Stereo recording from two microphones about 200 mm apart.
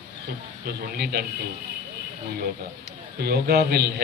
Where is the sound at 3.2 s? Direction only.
50° right (ahead or behind).